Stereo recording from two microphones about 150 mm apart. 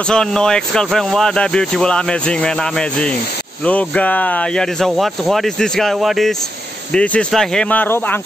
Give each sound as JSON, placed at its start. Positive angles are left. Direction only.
{"t": 0.1, "sound": "speech", "side_deg": 5}